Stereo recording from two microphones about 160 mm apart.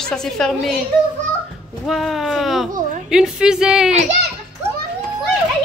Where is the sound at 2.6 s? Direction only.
55° right (ahead or behind).